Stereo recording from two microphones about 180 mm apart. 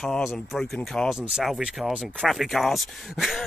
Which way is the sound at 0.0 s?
Centre (ahead or behind).